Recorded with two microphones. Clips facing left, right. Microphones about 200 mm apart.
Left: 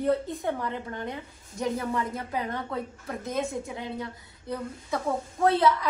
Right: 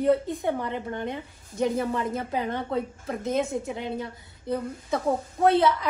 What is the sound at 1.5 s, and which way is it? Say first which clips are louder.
A woman's voice: right 3 dB; 25° right (ahead or behind).